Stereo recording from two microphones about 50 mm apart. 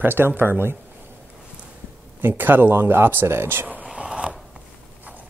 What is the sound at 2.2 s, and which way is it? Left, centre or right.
Speech, right.